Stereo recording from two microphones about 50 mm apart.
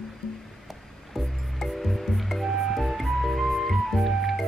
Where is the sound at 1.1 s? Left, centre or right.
Centre.